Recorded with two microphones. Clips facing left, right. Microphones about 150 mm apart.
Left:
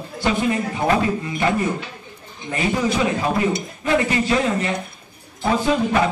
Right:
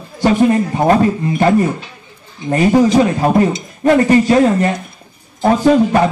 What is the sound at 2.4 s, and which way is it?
Speech, 45° right (ahead or behind).